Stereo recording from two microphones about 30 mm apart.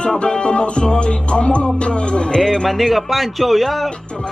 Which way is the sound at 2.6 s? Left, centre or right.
Centre.